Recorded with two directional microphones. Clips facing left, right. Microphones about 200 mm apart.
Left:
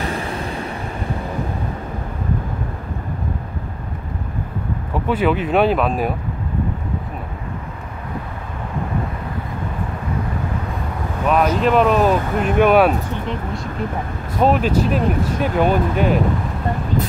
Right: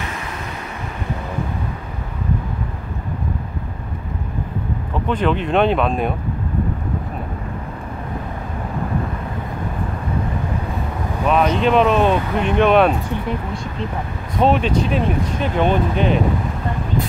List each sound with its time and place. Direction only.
0.0 s a sound: 35° left (ahead or behind)
4.9 s speech: 10° left (ahead or behind)
11.2 s speech: 5° left (ahead or behind)
14.4 s speech: 5° left (ahead or behind)